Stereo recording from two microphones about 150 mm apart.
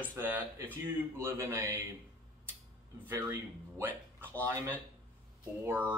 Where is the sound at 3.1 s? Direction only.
20° right (ahead or behind).